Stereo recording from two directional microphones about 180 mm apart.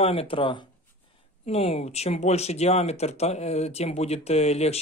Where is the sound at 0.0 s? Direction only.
35° left (ahead or behind).